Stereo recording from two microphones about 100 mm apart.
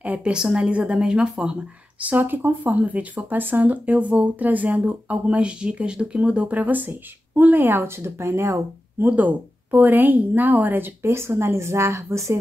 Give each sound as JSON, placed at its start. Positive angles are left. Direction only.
{"t": 0.0, "sound": "speech", "side_deg": -10}
{"t": 9.0, "sound": "a woman's voice", "side_deg": -15}